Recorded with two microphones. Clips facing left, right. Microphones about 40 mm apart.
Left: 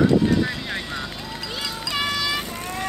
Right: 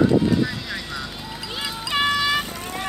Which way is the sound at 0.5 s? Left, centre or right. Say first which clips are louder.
Left 2 dB; left.